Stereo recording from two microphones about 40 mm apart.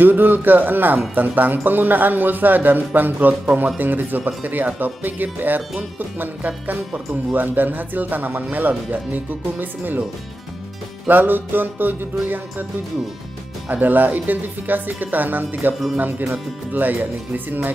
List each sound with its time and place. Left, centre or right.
0.0 s speech: right
11.1 s music: right
13.7 s speech: right